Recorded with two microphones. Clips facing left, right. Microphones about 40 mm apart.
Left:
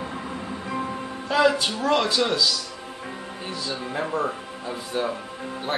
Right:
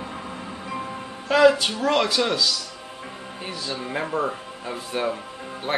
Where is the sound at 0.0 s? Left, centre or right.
Centre.